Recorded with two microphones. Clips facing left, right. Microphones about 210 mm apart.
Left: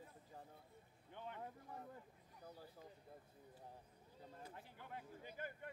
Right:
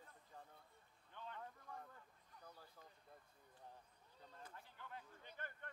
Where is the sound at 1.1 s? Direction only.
15° left (ahead or behind).